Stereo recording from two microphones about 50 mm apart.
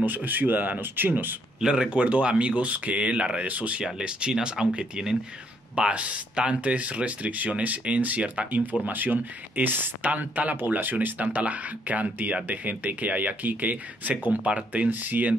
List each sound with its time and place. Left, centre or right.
0.0 s speech: right
1.6 s speech: centre
1.9 s speech: right
3.8 s speech: centre
8.8 s speech: right